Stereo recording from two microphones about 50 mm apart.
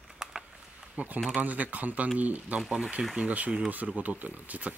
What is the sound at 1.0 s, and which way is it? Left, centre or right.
Speech, right.